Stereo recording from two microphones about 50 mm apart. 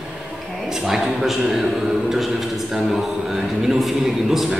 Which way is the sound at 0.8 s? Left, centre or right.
Centre.